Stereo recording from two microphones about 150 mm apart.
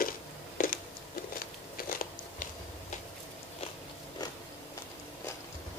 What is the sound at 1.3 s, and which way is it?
Biting, 70° left (ahead or behind).